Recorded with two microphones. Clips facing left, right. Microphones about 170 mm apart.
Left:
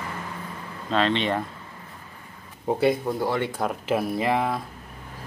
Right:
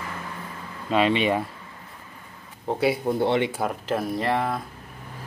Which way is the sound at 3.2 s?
25° right (ahead or behind).